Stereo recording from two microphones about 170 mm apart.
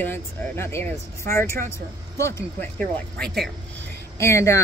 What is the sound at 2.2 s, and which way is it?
Speech, 15° left (ahead or behind).